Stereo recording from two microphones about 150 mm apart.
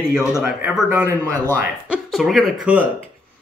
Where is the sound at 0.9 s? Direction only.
10° right (ahead or behind).